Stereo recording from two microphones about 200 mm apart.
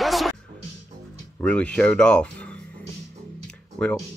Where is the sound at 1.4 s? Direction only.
5° left (ahead or behind).